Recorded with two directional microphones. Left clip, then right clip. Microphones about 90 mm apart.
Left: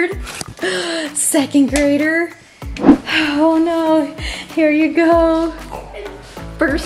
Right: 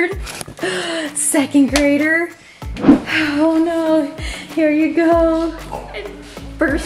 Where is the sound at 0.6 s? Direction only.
20° left (ahead or behind).